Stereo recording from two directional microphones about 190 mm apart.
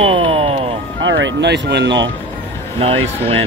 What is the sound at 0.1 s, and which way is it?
Music, 30° right (ahead or behind).